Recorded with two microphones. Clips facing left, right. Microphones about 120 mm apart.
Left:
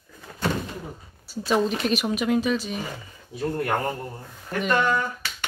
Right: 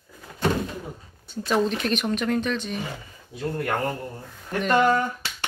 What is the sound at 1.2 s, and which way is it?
Speech, centre (ahead or behind).